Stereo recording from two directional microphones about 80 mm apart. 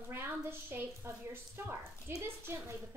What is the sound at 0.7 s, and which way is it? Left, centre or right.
Speech, right.